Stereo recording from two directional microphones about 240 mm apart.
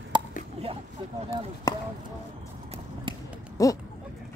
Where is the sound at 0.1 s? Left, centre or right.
Centre.